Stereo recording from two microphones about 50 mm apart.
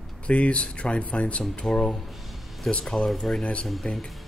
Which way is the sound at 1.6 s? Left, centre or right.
Centre.